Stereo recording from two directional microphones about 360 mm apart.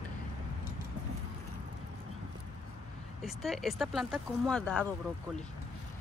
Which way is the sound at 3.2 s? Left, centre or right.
Centre.